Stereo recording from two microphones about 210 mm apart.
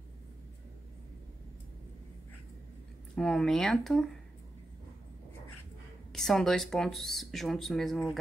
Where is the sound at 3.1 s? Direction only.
5° left (ahead or behind).